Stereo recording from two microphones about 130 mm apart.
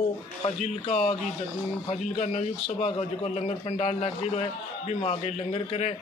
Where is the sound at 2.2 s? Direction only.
55° left (ahead or behind).